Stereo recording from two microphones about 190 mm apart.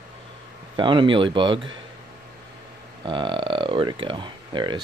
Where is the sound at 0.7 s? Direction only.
25° right (ahead or behind).